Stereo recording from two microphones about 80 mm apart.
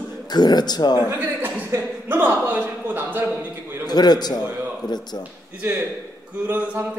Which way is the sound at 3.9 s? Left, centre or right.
Left.